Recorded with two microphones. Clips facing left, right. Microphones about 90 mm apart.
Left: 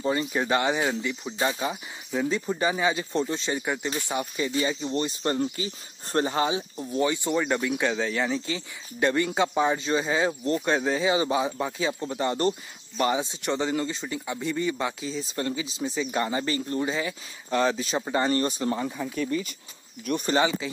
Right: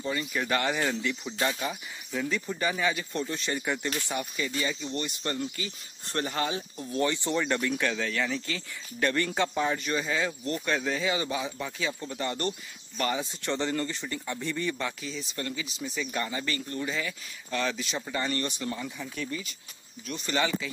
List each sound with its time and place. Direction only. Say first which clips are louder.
0.0 s speech: left 5 dB; 30° left (ahead or behind)
4.6 s speech: left 6 dB; 30° left (ahead or behind)
6.5 s speech: left 4 dB; 15° left (ahead or behind); by 12.5 s 30° left (ahead or behind)
12.9 s speech: left 5 dB; 20° left (ahead or behind)
15.0 s speech: left 6 dB; 30° left (ahead or behind)
20.1 s speech: left 10 dB; 55° left (ahead or behind)
20.6 s speech: left 4 dB; 25° left (ahead or behind)